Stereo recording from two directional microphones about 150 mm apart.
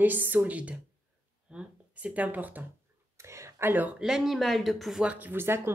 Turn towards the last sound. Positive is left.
turn(degrees=-15)  # may be behind; listen again after turning